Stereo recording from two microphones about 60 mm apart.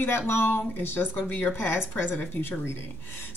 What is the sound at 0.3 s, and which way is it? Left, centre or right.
Speech, left.